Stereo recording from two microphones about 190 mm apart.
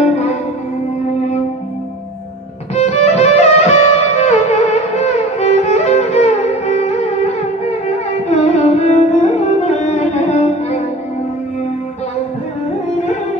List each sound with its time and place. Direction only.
2.7 s music: 35° left (ahead or behind)
8.3 s music: 35° left (ahead or behind)